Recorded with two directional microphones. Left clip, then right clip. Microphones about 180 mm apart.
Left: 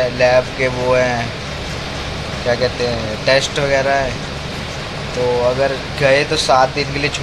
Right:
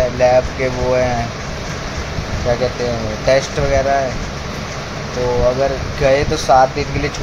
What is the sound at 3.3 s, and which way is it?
Speech, 10° right (ahead or behind).